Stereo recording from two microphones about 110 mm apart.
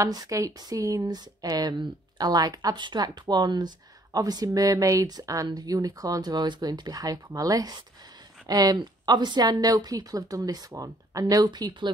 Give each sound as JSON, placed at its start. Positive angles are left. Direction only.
{"t": 0.0, "sound": "speech", "side_deg": -35}